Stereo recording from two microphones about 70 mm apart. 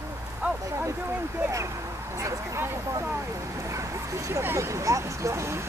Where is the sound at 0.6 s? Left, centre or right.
Right.